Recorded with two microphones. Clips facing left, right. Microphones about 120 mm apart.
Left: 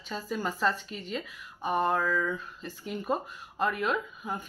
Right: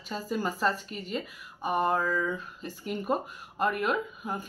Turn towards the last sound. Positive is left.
turn(degrees=-5)  # may be behind; listen again after turning